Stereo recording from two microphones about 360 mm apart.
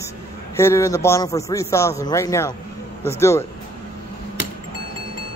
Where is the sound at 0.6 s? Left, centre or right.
Centre.